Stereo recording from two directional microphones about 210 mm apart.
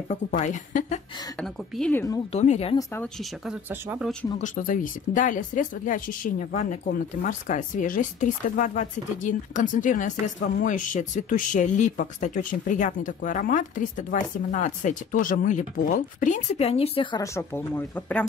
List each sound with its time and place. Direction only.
0.1 s speech: 35° left (ahead or behind)
1.4 s a woman's voice: 5° left (ahead or behind)
2.3 s speech: 30° left (ahead or behind)
3.4 s speech: centre (ahead or behind)
4.4 s speech: 40° left (ahead or behind); by 18.2 s 10° left (ahead or behind)